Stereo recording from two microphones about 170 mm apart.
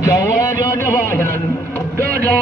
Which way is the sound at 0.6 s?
15° left (ahead or behind).